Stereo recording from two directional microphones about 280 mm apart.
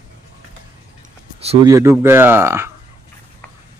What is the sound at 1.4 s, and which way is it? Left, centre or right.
Speech, right.